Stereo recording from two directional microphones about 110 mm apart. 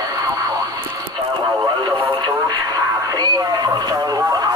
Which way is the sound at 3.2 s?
40° right (ahead or behind).